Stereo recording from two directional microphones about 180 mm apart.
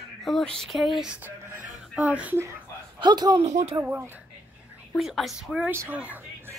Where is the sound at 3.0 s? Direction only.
25° right (ahead or behind).